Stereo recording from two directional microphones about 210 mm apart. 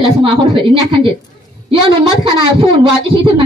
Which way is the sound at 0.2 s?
20° right (ahead or behind).